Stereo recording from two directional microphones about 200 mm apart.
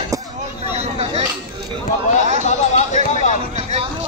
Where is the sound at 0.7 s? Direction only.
30° right (ahead or behind).